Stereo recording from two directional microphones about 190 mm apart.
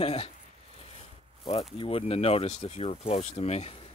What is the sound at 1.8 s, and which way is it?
Speech, 30° left (ahead or behind).